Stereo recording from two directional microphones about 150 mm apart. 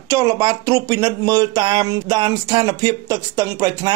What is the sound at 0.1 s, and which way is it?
Speech, 25° right (ahead or behind).